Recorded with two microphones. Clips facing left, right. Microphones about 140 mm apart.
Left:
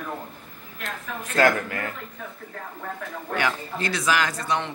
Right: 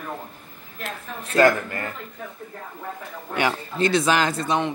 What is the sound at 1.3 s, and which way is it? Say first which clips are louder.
Speech: right 3 dB; centre (ahead or behind).